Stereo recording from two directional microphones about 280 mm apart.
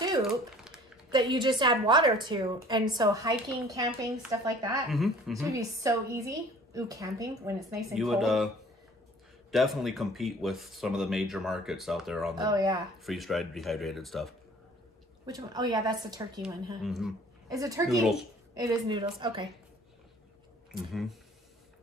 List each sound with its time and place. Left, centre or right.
1.1 s a woman's voice: centre
4.8 s a woman's voice: centre
7.5 s speech: centre
9.5 s speech: centre
12.4 s a woman's voice: centre
13.0 s speech: centre
15.2 s a woman's voice: centre
16.4 s speech: centre
17.5 s a woman's voice: centre
20.7 s speech: centre